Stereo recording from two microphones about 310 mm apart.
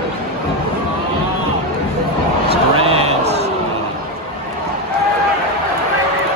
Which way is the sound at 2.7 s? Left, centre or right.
Centre.